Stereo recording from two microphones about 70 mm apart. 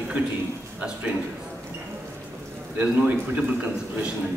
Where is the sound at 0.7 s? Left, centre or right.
Right.